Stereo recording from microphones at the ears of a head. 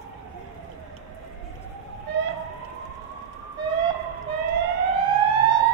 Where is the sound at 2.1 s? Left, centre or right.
Right.